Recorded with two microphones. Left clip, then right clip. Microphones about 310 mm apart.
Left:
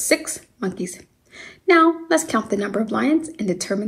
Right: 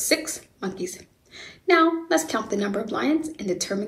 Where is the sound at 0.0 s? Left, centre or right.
Left.